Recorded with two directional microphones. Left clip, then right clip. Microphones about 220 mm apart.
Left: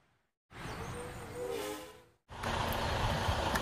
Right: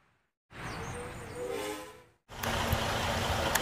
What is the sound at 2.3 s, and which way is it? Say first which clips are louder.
Vehicle: right 3 dB; 15° right (ahead or behind).